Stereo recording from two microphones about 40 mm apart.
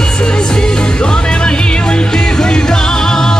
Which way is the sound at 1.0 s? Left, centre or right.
Left.